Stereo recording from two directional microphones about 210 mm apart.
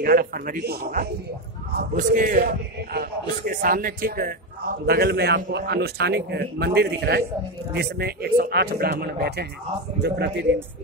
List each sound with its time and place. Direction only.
0.0 s speech: 45° right (ahead or behind)